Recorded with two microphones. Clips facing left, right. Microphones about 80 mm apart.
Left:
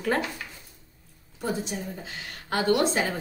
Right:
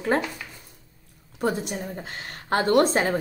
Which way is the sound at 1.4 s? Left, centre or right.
Right.